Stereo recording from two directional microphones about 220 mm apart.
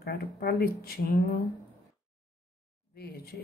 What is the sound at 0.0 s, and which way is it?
Speech, 45° left (ahead or behind).